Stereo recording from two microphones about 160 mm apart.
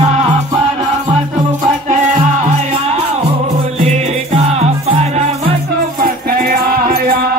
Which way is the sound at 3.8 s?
40° right (ahead or behind).